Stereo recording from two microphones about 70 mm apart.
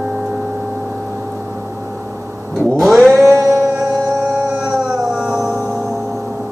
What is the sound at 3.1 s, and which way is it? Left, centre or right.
Music, right.